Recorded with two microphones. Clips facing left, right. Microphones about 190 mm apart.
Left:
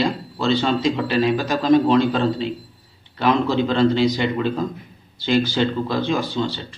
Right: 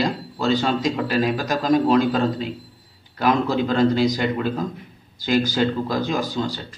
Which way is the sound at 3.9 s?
45° right (ahead or behind).